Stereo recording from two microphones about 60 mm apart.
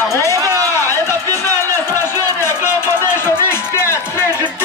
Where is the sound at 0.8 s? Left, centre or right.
Left.